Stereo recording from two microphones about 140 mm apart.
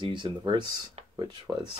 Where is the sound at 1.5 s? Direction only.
20° right (ahead or behind).